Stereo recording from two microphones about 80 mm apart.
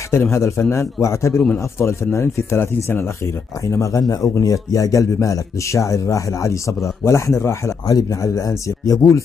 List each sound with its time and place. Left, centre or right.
0.1 s speech: left
3.6 s speech: left